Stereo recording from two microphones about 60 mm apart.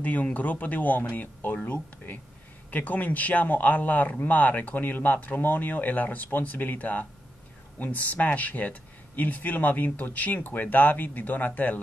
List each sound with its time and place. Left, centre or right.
0.0 s speech: left